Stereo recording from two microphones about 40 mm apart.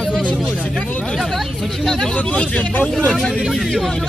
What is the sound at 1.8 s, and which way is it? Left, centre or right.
Speech, centre.